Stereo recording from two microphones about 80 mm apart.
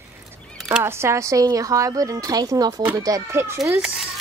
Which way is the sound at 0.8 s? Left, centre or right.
Right.